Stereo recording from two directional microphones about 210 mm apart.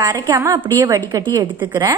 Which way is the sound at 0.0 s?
15° right (ahead or behind).